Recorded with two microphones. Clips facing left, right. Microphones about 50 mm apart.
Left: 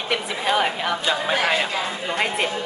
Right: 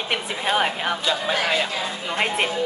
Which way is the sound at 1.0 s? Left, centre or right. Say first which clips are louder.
Left 1 dB; centre.